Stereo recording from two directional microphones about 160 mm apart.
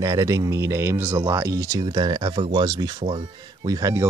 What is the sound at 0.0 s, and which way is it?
Speech, 20° right (ahead or behind).